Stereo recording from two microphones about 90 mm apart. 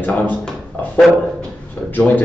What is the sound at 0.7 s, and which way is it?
Dog, 20° left (ahead or behind).